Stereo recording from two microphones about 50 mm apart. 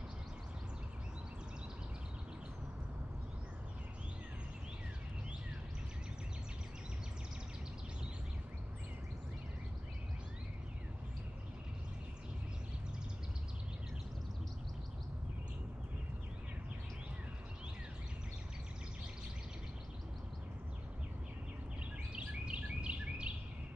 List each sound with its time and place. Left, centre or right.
22.1 s bird vocalization: right